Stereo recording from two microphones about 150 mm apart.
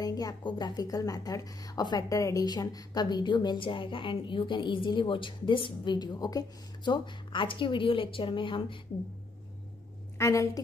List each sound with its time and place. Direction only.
0.0 s a woman's voice: 25° left (ahead or behind)
10.1 s a woman's voice: 20° left (ahead or behind)